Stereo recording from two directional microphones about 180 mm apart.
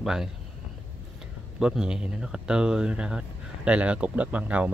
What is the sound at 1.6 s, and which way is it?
Speech, 5° right (ahead or behind).